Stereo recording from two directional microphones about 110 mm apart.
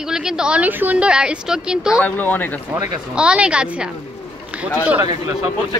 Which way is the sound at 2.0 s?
15° left (ahead or behind).